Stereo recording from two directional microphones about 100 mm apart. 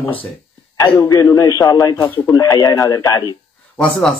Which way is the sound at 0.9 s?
35° left (ahead or behind).